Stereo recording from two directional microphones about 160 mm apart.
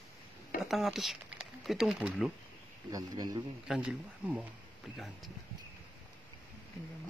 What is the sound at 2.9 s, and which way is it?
Speech, 25° right (ahead or behind).